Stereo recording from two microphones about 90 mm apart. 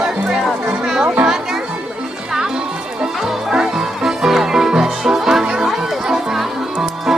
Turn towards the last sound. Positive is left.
turn(degrees=-5)  # may be behind; listen again after turning